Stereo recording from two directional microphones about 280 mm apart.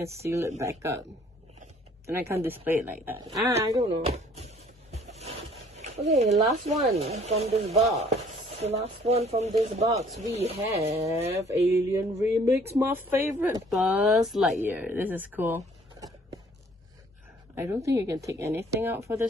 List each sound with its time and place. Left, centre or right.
0.0 s speech: centre
2.0 s speech: centre
3.7 s a sound: right
6.7 s chopping: right
11.4 s speech: centre
17.6 s speech: centre